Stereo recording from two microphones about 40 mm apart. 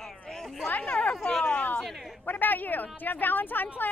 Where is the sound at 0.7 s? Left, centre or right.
Left.